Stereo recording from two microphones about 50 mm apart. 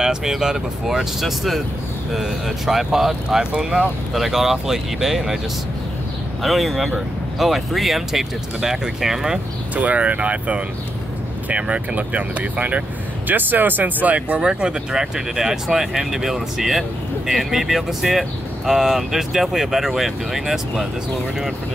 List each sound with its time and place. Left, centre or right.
0.0 s speech: centre
6.4 s speech: centre
9.8 s speech: right
14.4 s speech: centre